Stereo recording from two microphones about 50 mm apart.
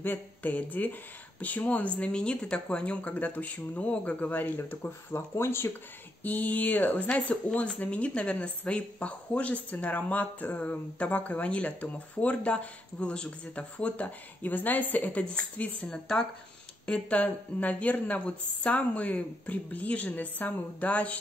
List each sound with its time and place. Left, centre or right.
0.0 s speech: left
5.3 s speech: left
6.2 s speech: left
15.8 s speech: centre